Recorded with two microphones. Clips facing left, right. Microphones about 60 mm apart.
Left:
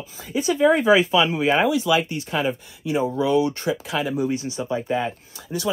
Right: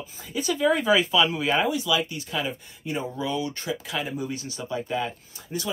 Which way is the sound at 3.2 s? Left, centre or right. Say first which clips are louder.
Left 9 dB; left.